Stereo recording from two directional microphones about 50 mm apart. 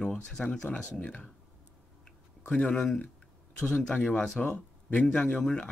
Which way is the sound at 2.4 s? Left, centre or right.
Centre.